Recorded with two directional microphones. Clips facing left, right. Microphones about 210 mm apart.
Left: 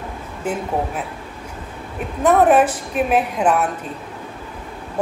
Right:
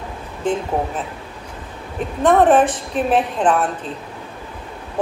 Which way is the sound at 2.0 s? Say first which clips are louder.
Right 1 dB; 10° left (ahead or behind).